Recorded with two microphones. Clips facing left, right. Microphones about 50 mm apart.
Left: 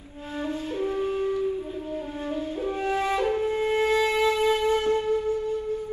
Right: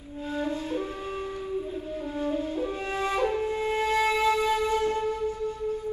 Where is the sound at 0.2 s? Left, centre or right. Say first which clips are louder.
Right 1 dB; left.